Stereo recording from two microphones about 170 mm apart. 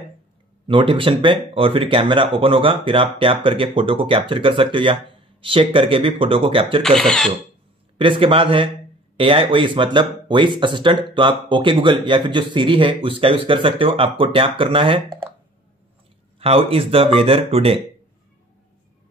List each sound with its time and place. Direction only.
0.7 s speech: 30° right (ahead or behind)
7.0 s speech: centre (ahead or behind)
8.0 s speech: 30° right (ahead or behind)
16.3 s speech: 35° right (ahead or behind)